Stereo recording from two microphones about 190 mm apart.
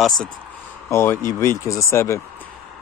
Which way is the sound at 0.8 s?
15° left (ahead or behind).